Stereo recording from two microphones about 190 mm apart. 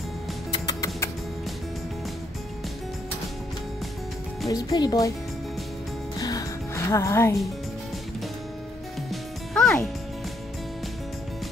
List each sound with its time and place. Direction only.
0.7 s music: 20° left (ahead or behind)
4.5 s speech: 20° left (ahead or behind)
6.2 s music: 20° left (ahead or behind)
9.1 s music: centre (ahead or behind)